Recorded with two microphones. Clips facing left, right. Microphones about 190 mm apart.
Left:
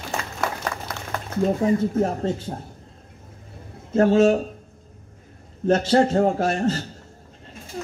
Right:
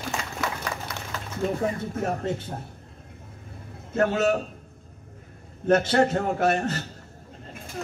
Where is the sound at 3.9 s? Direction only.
30° left (ahead or behind).